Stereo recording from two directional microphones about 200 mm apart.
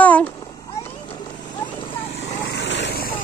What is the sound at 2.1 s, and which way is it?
Vehicle, 60° left (ahead or behind).